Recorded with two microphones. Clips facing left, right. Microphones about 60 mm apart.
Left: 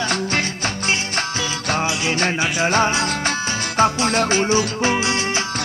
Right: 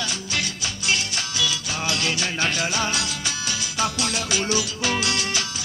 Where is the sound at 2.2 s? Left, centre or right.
Left.